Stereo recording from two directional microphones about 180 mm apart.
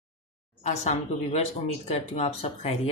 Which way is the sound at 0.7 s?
40° left (ahead or behind).